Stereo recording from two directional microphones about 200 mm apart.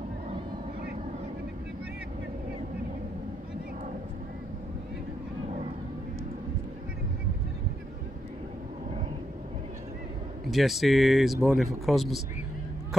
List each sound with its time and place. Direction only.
10.5 s speech: centre (ahead or behind)